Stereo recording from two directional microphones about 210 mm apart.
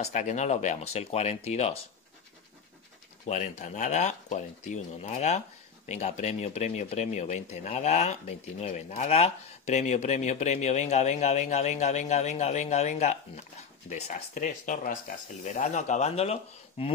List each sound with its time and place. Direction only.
0.0 s speech: 35° left (ahead or behind)
3.3 s speech: 35° left (ahead or behind)